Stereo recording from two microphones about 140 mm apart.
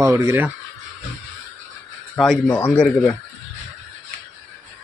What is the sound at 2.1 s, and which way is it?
Speech, centre (ahead or behind).